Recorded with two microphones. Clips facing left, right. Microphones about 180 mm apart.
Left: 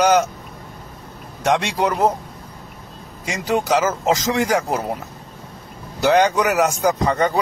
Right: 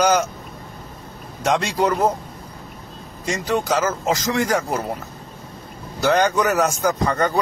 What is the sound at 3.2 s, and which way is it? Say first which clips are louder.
A man's voice: left 1 dB; 15° left (ahead or behind).